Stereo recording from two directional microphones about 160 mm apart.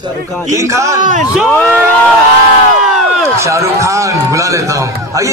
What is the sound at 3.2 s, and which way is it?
A man's voice, 20° right (ahead or behind).